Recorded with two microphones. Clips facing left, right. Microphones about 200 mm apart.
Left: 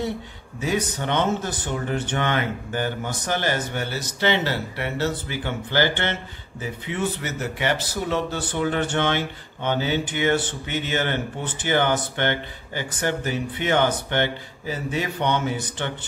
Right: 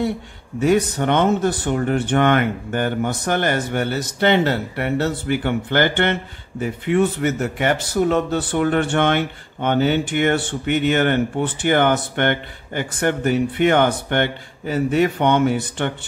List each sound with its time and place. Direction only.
0.6 s speech: 60° right (ahead or behind)